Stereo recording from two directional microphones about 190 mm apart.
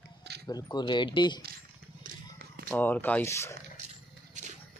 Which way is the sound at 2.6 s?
10° left (ahead or behind).